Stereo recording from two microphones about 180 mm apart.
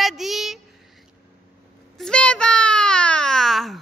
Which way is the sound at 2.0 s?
5° left (ahead or behind).